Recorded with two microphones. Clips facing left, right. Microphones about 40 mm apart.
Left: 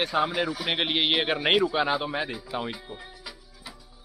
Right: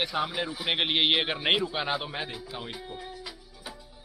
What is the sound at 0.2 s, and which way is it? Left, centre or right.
Speech, left.